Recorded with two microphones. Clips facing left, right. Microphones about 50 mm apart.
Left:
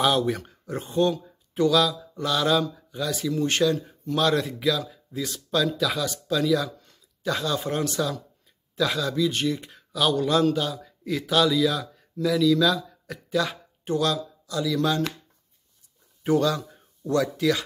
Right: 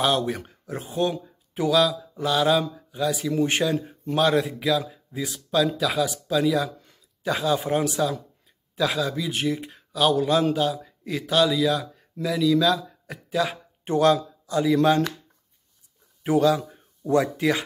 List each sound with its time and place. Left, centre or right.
0.0 s speech: centre
3.3 s a man's voice: centre
4.3 s speech: centre
13.8 s speech: right
16.3 s a man's voice: centre